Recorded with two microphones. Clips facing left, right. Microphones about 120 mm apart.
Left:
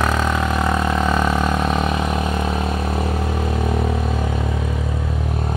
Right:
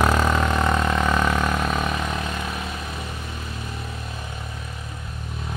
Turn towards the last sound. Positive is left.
turn(degrees=85)